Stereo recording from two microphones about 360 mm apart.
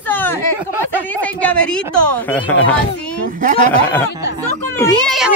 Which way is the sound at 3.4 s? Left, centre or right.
Right.